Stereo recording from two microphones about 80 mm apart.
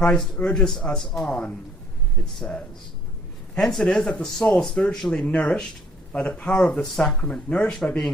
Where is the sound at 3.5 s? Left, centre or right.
Centre.